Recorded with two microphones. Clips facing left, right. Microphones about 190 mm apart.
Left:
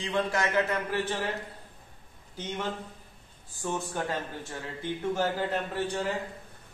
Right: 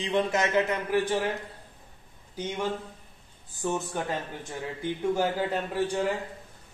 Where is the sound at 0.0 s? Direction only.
20° right (ahead or behind).